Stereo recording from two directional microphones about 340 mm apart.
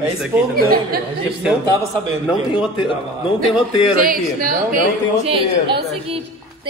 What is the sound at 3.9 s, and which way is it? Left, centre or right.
A woman's voice, right.